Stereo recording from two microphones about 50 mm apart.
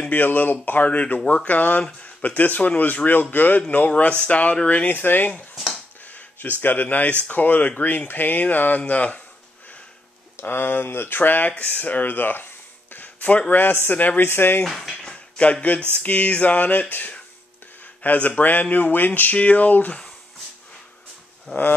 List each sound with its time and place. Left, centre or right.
0.1 s speech: left
6.0 s a sound: left
6.6 s speech: left
10.3 s speech: left
14.2 s speech: left
14.6 s speech: centre
15.0 s a sound: left
16.0 s speech: left
18.0 s speech: left
19.3 s speech: left
21.5 s speech: left